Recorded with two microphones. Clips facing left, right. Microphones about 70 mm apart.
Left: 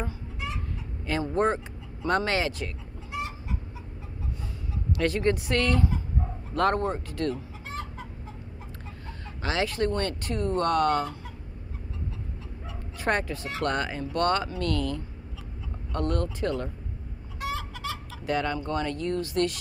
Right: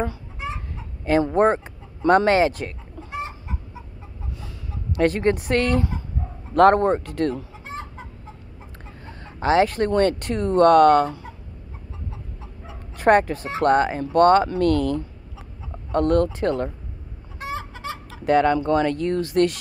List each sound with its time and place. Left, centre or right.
0.4 s chicken: right
4.9 s speech: right
6.5 s speech: right
7.2 s chicken: right
9.4 s speech: right
9.9 s speech: right
12.9 s speech: right
17.4 s chicken: right
18.2 s speech: right
18.6 s speech: right